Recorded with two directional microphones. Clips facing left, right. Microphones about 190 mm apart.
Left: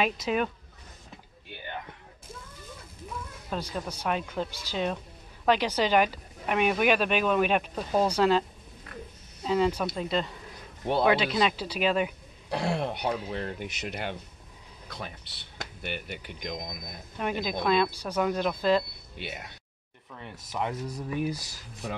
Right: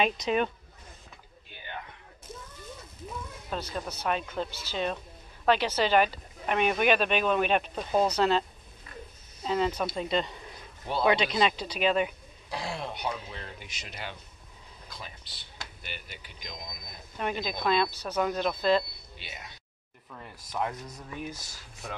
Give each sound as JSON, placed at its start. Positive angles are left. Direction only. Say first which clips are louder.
{"t": 0.0, "sound": "speech", "louder": "right 1 dB", "side_deg": 5}
{"t": 3.5, "sound": "a woman's voice", "louder": "left 1 dB", "side_deg": 10}
{"t": 12.4, "sound": "speech", "louder": "left 6 dB", "side_deg": 60}
{"t": 17.2, "sound": "a woman's voice", "louder": "left 2 dB", "side_deg": 10}
{"t": 19.1, "sound": "speech", "louder": "left 7 dB", "side_deg": 60}
{"t": 20.1, "sound": "speech", "louder": "left 2 dB", "side_deg": 0}
{"t": 21.3, "sound": "speech", "louder": "left 7 dB", "side_deg": 35}